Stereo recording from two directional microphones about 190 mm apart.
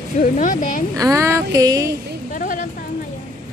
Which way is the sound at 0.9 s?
15° right (ahead or behind).